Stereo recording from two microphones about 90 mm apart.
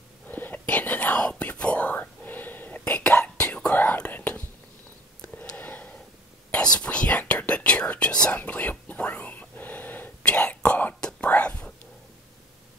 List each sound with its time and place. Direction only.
0.3 s whispering: 20° left (ahead or behind)
5.2 s a sound: 15° left (ahead or behind)
6.5 s whispering: 10° left (ahead or behind)